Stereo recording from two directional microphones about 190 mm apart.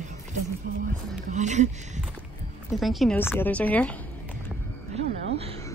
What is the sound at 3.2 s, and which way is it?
Speech, 10° left (ahead or behind).